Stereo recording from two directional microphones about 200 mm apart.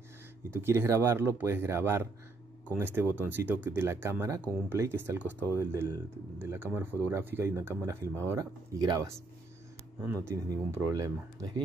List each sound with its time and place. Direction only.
0.5 s speech: 10° right (ahead or behind)